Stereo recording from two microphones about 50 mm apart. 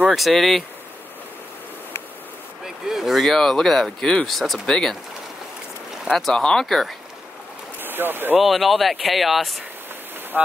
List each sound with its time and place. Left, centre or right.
0.1 s speech: centre
2.6 s speech: centre
3.3 s speech: centre
4.6 s speech: centre
6.0 s speech: centre
6.3 s speech: centre
6.6 s speech: centre
7.8 s speech: right
8.4 s speech: centre
10.3 s speech: right